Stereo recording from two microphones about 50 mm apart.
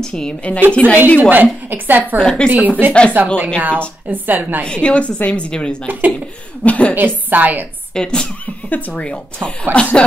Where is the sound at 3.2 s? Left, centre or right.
Right.